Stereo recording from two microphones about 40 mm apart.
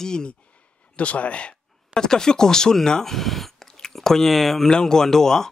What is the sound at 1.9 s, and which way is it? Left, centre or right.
Speech, centre.